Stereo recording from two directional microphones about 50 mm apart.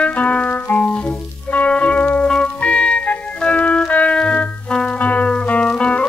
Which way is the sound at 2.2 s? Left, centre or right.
Left.